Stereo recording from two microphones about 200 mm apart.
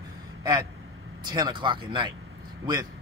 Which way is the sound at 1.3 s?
25° right (ahead or behind).